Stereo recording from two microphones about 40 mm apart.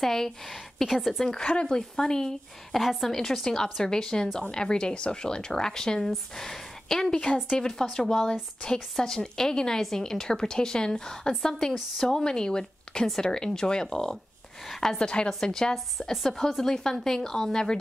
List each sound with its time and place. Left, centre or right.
0.0 s a woman's voice: centre
0.8 s a woman's voice: centre
1.2 s a woman's voice: centre
2.8 s a woman's voice: centre
15.7 s a woman's voice: centre